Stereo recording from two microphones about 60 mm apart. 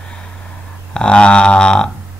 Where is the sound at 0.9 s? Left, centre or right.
Centre.